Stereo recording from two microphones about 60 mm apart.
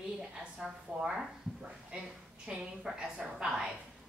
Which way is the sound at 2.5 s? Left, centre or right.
Centre.